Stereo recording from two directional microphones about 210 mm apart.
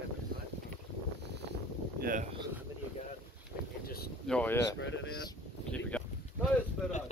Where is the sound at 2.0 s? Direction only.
40° right (ahead or behind).